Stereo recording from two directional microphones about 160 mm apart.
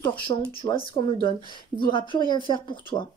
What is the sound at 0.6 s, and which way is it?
Speech, 35° left (ahead or behind).